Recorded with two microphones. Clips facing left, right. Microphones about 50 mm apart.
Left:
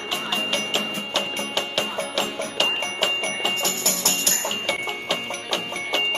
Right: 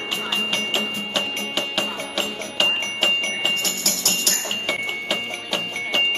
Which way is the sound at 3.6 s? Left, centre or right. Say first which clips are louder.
Left 1 dB; left.